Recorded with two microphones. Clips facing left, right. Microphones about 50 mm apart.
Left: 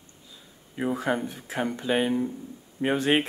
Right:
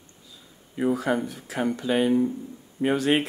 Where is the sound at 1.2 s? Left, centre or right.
Left.